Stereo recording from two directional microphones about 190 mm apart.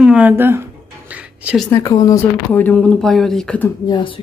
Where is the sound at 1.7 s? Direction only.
20° left (ahead or behind).